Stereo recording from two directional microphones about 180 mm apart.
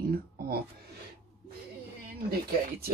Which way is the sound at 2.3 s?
60° right (ahead or behind).